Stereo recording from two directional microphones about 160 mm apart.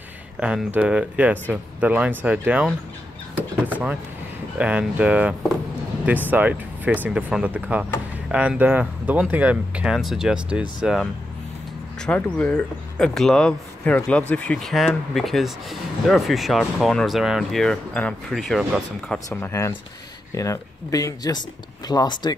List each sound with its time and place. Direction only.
0.4 s speech: 5° right (ahead or behind)
12.1 s speech: 10° left (ahead or behind)
19.2 s speech: 20° left (ahead or behind)